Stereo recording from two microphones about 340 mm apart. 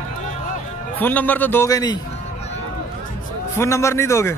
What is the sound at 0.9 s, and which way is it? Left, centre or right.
A man's voice, centre.